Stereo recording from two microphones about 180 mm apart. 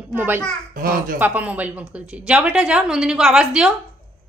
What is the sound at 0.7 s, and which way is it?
Speech, 55° right (ahead or behind).